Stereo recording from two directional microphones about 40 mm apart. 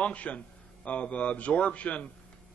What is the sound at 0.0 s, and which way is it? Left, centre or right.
Speech, left.